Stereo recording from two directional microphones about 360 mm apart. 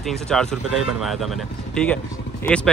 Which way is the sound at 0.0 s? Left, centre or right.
Centre.